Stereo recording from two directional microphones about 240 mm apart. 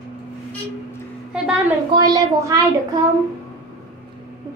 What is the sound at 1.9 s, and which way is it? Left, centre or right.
Speech, centre.